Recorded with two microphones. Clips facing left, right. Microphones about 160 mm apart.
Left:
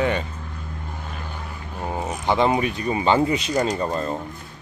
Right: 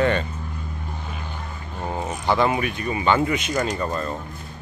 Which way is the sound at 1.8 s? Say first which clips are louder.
Even; 5° left (ahead or behind).